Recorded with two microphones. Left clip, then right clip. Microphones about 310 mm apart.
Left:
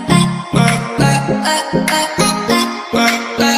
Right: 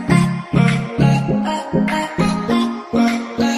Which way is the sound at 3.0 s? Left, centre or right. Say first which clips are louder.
Left 7 dB; left.